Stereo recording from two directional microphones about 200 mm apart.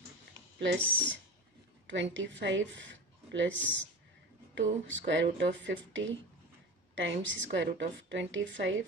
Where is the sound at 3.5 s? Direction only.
10° left (ahead or behind).